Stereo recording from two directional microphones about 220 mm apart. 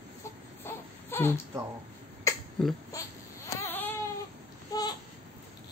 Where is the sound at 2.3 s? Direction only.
15° left (ahead or behind).